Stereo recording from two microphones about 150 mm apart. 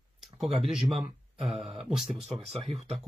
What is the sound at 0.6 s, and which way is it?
Speech, 5° right (ahead or behind).